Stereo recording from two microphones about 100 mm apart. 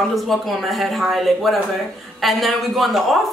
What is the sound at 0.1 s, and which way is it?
A woman's voice, centre (ahead or behind).